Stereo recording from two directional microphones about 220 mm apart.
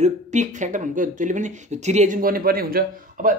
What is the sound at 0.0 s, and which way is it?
Speech, 35° right (ahead or behind).